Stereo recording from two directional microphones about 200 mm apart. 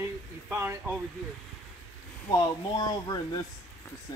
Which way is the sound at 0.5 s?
10° right (ahead or behind).